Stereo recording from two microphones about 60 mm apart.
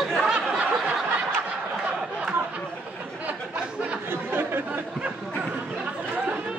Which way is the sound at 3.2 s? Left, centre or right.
Right.